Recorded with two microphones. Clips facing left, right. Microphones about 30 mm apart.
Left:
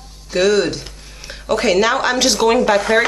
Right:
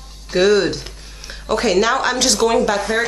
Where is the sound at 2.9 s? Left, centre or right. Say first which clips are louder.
Left 6 dB; left.